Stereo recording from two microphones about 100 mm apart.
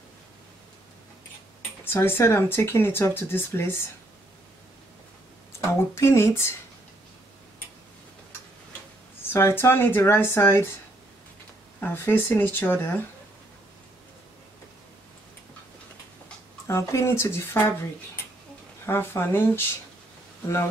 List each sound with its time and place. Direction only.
1.9 s speech: 25° left (ahead or behind)
5.9 s speech: 25° left (ahead or behind)
9.3 s speech: 25° left (ahead or behind)
11.8 s speech: 20° left (ahead or behind)
16.6 s speech: 30° left (ahead or behind)